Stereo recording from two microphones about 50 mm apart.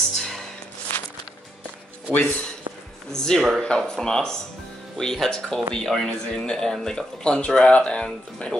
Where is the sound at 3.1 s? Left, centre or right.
Centre.